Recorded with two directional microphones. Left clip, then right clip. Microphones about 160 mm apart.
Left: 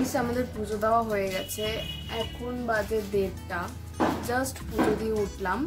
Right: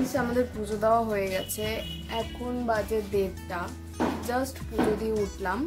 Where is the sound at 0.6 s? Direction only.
20° right (ahead or behind).